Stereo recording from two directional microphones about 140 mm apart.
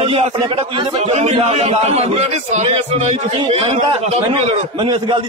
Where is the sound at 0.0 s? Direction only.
40° right (ahead or behind).